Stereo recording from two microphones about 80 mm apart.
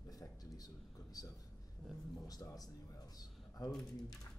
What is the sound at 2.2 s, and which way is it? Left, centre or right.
Speech, left.